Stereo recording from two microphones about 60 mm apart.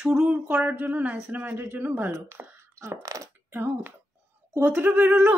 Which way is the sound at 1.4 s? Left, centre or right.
Right.